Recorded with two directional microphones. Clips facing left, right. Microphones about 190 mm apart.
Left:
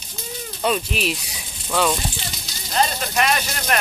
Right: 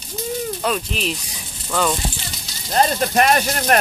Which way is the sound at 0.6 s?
5° left (ahead or behind).